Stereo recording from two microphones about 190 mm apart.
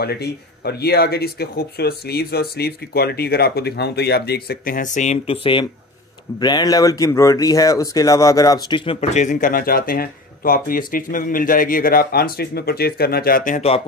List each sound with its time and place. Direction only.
0.0 s speech: 55° left (ahead or behind); by 8.9 s 25° left (ahead or behind)
9.1 s speech: 40° left (ahead or behind)